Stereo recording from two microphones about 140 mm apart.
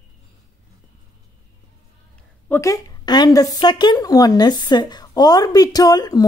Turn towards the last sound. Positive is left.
turn(degrees=30)  # may be behind; listen again after turning